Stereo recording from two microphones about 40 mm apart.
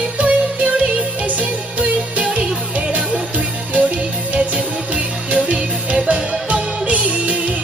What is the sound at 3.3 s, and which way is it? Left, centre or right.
Music, right.